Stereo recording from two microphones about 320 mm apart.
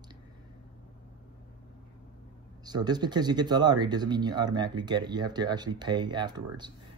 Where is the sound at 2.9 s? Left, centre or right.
Centre.